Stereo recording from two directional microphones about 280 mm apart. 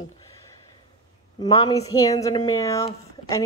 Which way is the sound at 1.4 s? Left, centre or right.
Centre.